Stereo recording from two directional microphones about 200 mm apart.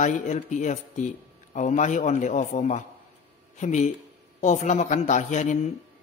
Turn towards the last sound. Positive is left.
turn(degrees=35)  # may be behind; listen again after turning